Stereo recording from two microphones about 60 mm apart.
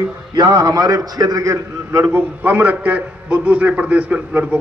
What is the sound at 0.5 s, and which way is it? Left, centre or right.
A man's voice, right.